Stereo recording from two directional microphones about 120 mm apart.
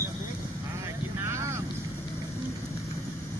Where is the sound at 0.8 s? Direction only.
25° right (ahead or behind).